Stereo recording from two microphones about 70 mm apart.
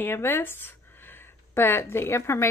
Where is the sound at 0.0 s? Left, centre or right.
Left.